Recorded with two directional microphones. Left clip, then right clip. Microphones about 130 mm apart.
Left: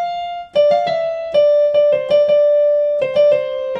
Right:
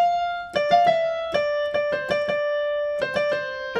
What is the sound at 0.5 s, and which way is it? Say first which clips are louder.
Keyboard: left 5 dB; 30° left (ahead or behind).